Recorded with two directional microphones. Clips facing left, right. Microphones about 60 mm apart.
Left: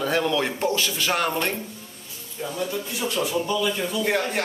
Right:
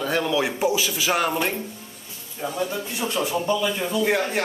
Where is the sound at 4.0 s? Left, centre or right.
Centre.